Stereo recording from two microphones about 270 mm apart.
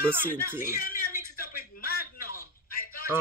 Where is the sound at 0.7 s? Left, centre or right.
Left.